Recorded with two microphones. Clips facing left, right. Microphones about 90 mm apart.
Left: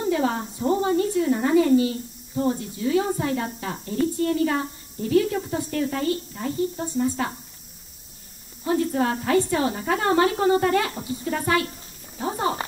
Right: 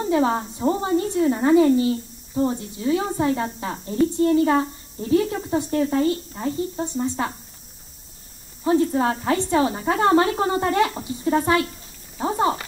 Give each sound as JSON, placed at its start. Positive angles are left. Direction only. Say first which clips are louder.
{"t": 0.1, "sound": "a woman's voice", "louder": "right 5 dB", "side_deg": -30}
{"t": 8.6, "sound": "a woman's voice", "louder": "right 3 dB", "side_deg": -25}
{"t": 12.2, "sound": "a sound", "louder": "right 5 dB", "side_deg": -30}